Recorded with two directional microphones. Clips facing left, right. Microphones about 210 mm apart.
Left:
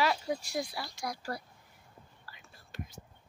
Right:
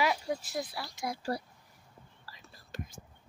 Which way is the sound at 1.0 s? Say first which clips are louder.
Right 5 dB; 25° right (ahead or behind).